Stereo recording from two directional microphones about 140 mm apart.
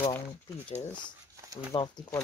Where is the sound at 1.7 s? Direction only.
45° left (ahead or behind).